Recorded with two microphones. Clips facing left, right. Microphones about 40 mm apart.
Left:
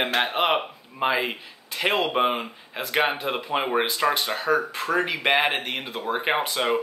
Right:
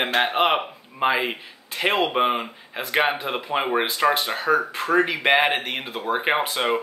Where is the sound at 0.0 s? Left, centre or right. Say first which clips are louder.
Right 2 dB; centre.